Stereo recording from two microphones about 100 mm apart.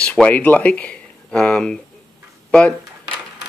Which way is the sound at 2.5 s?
10° left (ahead or behind).